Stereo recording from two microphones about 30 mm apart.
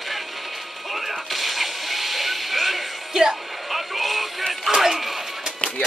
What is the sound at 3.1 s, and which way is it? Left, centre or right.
Music, right.